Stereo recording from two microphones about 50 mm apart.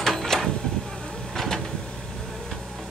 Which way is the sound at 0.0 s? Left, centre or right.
Centre.